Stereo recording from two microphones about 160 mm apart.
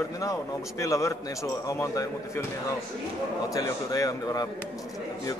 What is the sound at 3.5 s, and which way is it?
Speech, 20° left (ahead or behind).